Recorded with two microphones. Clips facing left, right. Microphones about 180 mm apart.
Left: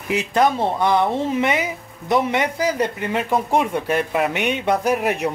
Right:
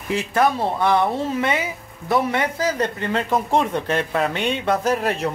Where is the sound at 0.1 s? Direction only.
20° left (ahead or behind).